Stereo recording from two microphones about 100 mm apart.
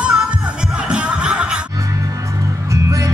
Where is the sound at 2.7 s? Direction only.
30° right (ahead or behind).